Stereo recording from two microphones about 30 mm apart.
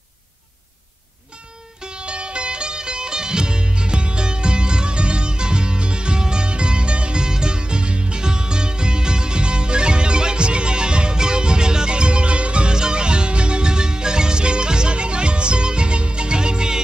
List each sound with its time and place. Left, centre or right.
1.8 s music: right
12.7 s music: right